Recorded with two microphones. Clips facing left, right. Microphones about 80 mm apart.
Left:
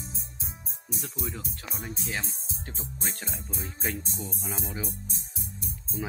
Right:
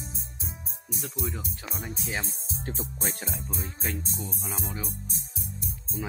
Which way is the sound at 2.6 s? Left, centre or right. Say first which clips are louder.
Right 7 dB; right.